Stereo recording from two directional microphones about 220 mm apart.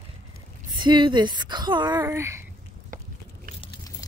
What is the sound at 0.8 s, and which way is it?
A woman's voice, 20° right (ahead or behind).